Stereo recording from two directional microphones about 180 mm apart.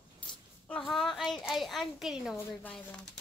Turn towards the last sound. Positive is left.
turn(degrees=5)  # may be behind; listen again after turning